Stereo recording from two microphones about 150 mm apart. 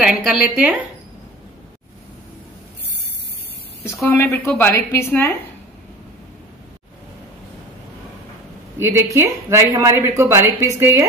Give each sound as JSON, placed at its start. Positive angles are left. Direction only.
{"t": 0.0, "sound": "a woman's voice", "side_deg": -5}
{"t": 4.2, "sound": "speech", "side_deg": 15}
{"t": 8.7, "sound": "speech", "side_deg": -15}